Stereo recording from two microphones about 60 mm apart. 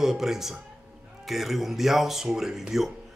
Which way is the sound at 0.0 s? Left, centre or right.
Centre.